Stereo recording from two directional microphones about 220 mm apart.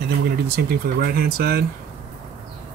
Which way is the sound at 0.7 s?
45° right (ahead or behind).